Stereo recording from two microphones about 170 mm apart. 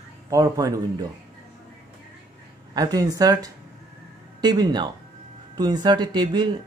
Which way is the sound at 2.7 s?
20° right (ahead or behind).